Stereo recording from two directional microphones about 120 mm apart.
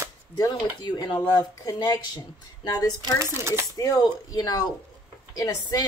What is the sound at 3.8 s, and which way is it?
Speech, 30° left (ahead or behind).